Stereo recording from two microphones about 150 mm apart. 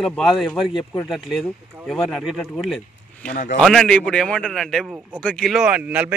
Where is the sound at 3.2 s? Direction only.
55° left (ahead or behind).